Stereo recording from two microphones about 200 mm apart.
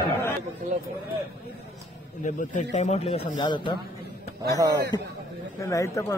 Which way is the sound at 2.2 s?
40° left (ahead or behind).